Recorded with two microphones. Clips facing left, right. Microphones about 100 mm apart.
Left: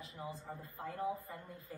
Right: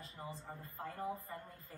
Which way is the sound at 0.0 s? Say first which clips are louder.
Left 2 dB; 5° left (ahead or behind).